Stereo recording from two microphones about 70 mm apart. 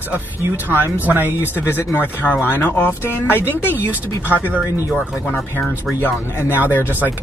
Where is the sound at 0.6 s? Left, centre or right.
Right.